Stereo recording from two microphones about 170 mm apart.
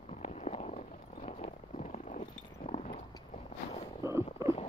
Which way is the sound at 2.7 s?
45° left (ahead or behind).